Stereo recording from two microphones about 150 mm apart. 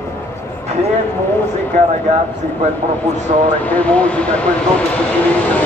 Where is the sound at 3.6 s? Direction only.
10° left (ahead or behind).